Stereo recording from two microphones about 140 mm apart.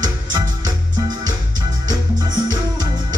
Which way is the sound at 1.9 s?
30° right (ahead or behind).